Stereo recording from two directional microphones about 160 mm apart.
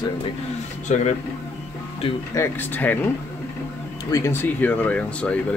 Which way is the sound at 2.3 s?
15° left (ahead or behind).